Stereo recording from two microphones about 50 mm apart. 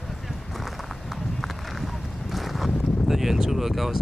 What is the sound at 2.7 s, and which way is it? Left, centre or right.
Speech, centre.